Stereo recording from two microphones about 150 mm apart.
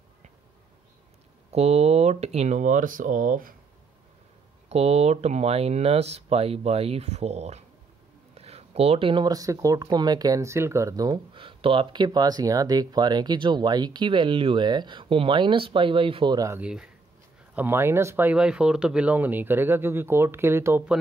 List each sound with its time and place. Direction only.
1.5 s speech: 45° right (ahead or behind); by 3.5 s 65° right (ahead or behind)
4.6 s speech: 45° right (ahead or behind)
16.4 s speech: 10° right (ahead or behind)